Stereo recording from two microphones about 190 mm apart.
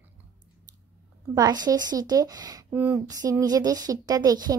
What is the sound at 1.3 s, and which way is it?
Speech, 20° right (ahead or behind).